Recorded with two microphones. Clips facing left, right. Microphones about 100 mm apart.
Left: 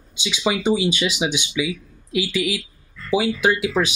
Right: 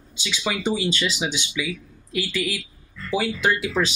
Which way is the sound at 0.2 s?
20° left (ahead or behind).